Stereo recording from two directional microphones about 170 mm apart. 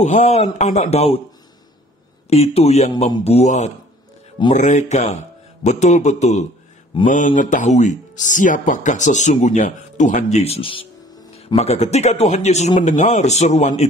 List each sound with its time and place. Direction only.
0.0 s speech: 45° left (ahead or behind)
2.2 s speech: 35° left (ahead or behind)